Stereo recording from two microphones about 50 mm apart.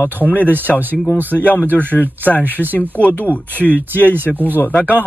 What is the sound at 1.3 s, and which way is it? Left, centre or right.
Speech, left.